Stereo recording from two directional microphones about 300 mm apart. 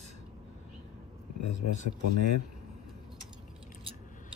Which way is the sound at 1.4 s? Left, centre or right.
Left.